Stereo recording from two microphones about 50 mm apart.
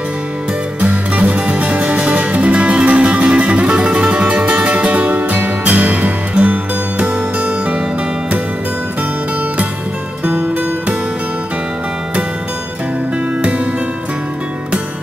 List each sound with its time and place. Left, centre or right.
0.7 s music: right